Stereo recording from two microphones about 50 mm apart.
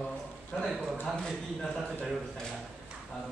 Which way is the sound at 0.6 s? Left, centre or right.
Centre.